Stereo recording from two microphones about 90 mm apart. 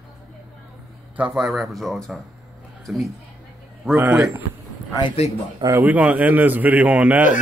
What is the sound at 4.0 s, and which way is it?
Speech, 15° right (ahead or behind).